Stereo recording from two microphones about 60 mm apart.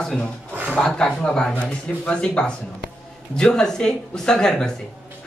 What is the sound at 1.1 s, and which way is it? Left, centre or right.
Speech, left.